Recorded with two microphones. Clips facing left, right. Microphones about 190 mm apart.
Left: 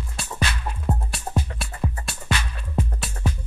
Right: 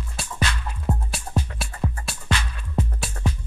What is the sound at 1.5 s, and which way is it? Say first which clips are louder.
Music: even; centre (ahead or behind).